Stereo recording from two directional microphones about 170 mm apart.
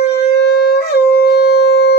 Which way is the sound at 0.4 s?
75° left (ahead or behind).